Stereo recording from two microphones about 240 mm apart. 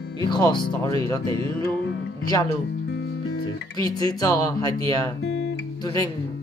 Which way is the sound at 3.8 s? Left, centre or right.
Centre.